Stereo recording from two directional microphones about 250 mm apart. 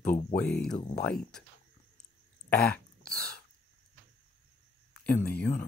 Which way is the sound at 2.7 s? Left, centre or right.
Centre.